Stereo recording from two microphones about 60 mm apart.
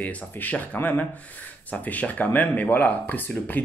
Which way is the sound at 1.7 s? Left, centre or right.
Left.